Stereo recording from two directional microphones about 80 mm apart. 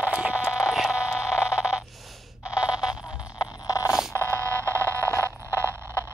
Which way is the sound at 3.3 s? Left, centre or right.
Left.